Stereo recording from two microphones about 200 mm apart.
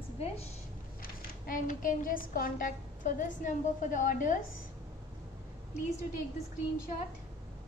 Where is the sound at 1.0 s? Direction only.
45° left (ahead or behind).